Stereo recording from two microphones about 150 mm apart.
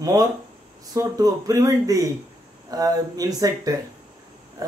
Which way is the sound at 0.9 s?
25° right (ahead or behind).